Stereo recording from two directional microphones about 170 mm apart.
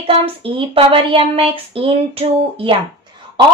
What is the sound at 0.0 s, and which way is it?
Speech, 35° right (ahead or behind).